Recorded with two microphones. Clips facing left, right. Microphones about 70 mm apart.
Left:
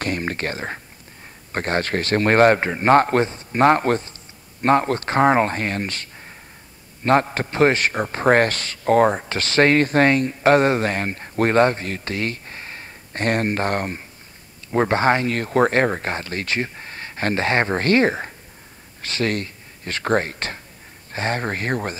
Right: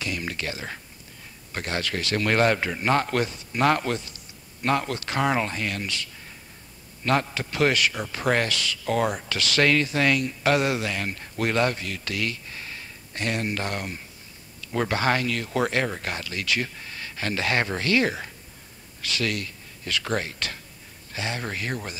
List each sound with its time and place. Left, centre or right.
0.0 s speech: left